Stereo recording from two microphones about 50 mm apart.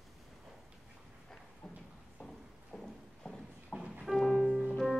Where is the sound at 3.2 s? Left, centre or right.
Centre.